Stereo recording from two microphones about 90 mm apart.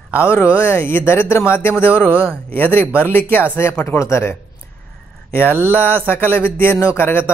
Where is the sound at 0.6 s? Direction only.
25° left (ahead or behind).